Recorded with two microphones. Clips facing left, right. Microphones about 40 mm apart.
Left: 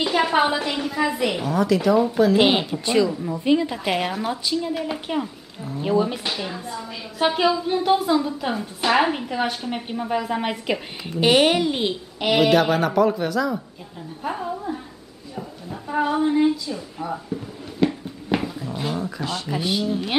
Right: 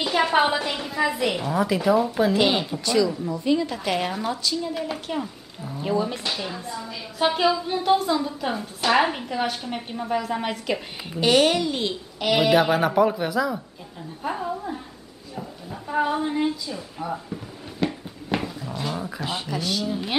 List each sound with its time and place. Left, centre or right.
0.0 s a woman's voice: centre
1.5 s a woman's voice: centre
2.3 s a woman's voice: centre
12.4 s a woman's voice: centre
17.7 s a sound: centre
18.9 s speech: centre
19.5 s a woman's voice: centre